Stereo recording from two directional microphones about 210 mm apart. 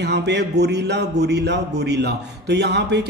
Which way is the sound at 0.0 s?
55° right (ahead or behind).